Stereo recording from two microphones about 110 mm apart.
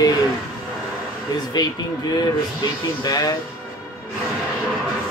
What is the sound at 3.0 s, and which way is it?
Speech, 35° left (ahead or behind).